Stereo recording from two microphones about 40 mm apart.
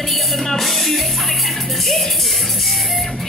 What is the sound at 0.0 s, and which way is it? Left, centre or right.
Music, centre.